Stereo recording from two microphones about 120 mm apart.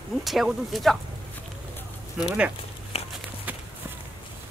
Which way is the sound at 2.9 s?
55° left (ahead or behind).